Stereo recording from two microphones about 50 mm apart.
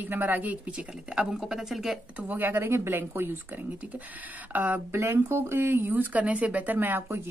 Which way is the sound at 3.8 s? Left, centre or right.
Right.